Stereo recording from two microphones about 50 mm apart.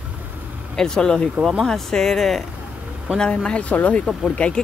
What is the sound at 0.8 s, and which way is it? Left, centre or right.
Speech, centre.